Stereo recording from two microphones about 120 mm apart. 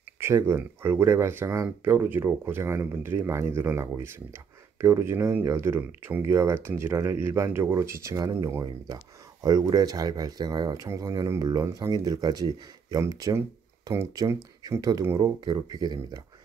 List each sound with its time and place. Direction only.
0.2 s speech: 20° right (ahead or behind)